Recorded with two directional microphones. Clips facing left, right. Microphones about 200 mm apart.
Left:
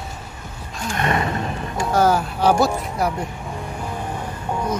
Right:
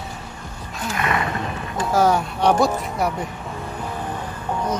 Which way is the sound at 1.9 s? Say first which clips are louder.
Even; centre (ahead or behind).